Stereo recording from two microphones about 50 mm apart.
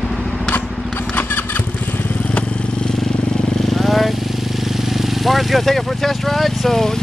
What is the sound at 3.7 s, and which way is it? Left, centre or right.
Vehicle, centre.